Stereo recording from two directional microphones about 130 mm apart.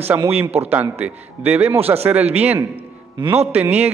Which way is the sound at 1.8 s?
50° right (ahead or behind).